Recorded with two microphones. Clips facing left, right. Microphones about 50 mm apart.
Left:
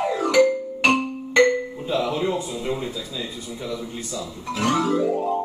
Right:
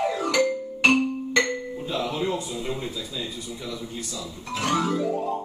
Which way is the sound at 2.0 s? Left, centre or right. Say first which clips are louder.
Left 2 dB; left.